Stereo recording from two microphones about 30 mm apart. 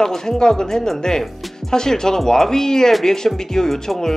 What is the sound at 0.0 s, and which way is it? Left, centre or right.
Speech, centre.